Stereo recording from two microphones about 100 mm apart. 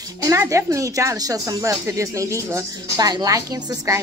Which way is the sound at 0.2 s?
30° right (ahead or behind).